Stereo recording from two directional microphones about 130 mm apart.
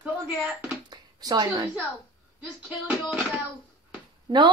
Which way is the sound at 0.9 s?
30° right (ahead or behind).